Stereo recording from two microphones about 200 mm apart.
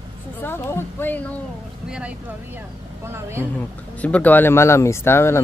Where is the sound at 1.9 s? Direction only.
5° right (ahead or behind).